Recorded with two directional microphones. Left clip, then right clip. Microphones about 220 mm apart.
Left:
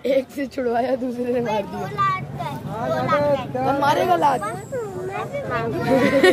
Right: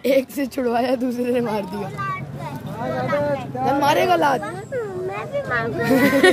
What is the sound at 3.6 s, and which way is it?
Speech, 35° right (ahead or behind).